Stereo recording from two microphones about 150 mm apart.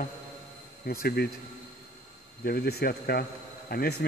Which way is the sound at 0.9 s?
85° left.